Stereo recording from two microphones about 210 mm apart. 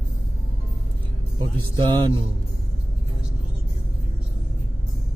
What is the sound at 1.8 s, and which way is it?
Speech, 20° right (ahead or behind).